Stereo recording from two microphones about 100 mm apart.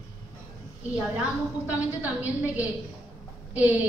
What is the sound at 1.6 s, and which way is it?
A woman's voice, 15° right (ahead or behind).